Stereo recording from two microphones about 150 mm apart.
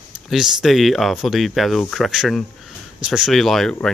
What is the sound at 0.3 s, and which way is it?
Speech, 5° right (ahead or behind).